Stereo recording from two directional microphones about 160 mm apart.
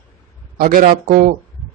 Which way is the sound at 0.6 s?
60° right (ahead or behind).